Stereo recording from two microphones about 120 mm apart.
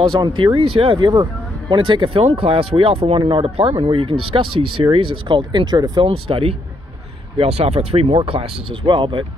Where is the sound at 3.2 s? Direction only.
40° right (ahead or behind).